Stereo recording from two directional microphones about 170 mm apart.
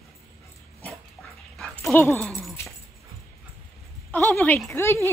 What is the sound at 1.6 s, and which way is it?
Dog, 10° left (ahead or behind).